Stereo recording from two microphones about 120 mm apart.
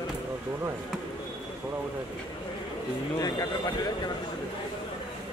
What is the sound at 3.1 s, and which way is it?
Speech, 30° left (ahead or behind).